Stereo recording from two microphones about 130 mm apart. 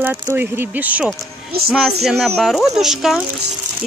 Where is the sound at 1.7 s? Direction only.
Centre (ahead or behind).